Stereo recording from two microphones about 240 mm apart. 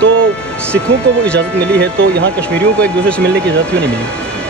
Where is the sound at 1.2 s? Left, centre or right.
Centre.